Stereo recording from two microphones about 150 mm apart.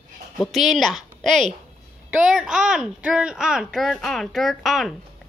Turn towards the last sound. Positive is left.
turn(degrees=0)  # may be behind; listen again after turning